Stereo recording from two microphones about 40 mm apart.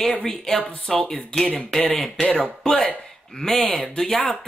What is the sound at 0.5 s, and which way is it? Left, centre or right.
Speech, left.